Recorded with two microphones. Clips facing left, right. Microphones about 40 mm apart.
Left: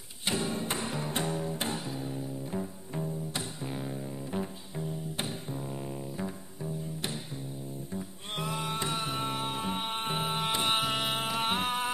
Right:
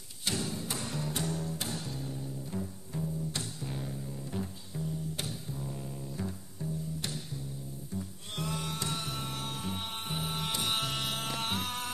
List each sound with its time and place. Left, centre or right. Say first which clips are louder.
0.2 s music: left 4 dB; left
8.5 s music: left 3 dB; left